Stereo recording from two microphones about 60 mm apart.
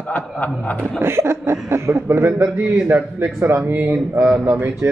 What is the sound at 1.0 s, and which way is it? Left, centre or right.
Speech, right.